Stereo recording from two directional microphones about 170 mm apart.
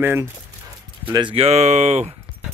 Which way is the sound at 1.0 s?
30° right (ahead or behind).